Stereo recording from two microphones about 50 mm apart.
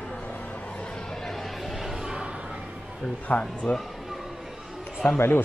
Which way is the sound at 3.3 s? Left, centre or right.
Left.